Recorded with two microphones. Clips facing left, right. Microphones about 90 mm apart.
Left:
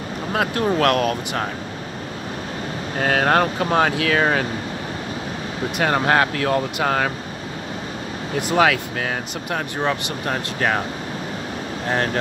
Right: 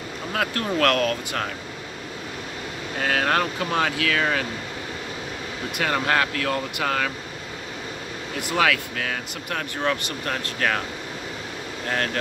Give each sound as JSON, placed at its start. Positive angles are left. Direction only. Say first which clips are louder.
{"t": 0.3, "sound": "speech", "louder": "left 5 dB", "side_deg": 25}
{"t": 3.0, "sound": "speech", "louder": "left 5 dB", "side_deg": 35}
{"t": 5.8, "sound": "speech", "louder": "left 4 dB", "side_deg": 35}
{"t": 8.4, "sound": "speech", "louder": "left 5 dB", "side_deg": 25}
{"t": 11.9, "sound": "speech", "louder": "left 4 dB", "side_deg": 25}